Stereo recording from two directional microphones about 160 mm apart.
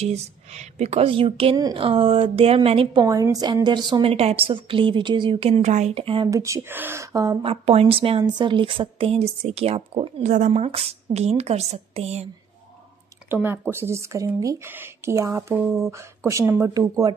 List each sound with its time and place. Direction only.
0.0 s a woman's voice: 45° right (ahead or behind)
6.2 s speech: 20° right (ahead or behind)
7.4 s a woman's voice: 40° right (ahead or behind)
10.2 s a woman's voice: 50° right (ahead or behind)
13.3 s speech: 15° right (ahead or behind)